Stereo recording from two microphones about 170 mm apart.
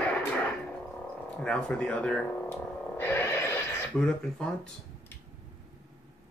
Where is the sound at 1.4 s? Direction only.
5° left (ahead or behind).